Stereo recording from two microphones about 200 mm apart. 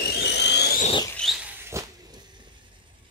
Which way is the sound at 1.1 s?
Centre (ahead or behind).